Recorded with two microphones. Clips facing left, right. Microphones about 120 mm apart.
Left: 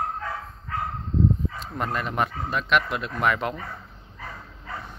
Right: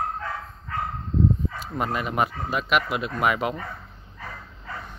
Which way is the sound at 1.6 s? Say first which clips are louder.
Right 1 dB; 5° right (ahead or behind).